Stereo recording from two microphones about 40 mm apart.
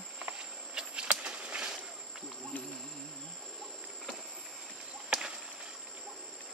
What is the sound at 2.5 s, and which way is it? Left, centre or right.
Insect, left.